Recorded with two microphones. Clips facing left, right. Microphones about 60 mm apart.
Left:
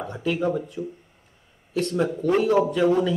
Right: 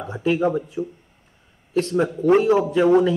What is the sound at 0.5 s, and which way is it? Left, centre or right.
Speech, centre.